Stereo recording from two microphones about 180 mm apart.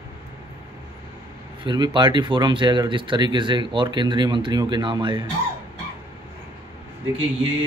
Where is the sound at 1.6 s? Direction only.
25° right (ahead or behind).